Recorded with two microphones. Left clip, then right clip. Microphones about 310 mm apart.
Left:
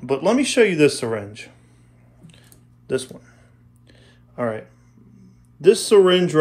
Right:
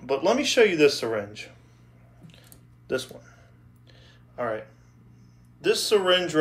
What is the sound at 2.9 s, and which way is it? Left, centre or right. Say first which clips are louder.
Speech: left 4 dB; left.